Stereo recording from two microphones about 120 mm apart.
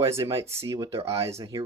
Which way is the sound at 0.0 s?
25° right (ahead or behind).